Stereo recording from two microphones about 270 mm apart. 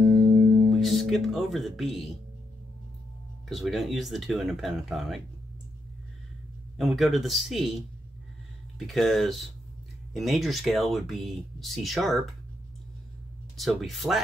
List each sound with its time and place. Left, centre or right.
0.0 s music: right
0.7 s speech: centre
3.4 s speech: centre
6.8 s speech: centre
13.6 s speech: centre